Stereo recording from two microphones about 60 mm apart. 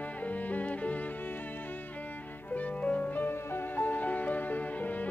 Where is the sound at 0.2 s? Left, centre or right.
Left.